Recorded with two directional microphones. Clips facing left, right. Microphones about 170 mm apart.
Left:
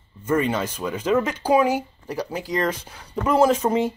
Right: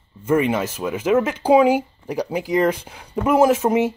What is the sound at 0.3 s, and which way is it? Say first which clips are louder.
Speech: right 3 dB; 10° right (ahead or behind).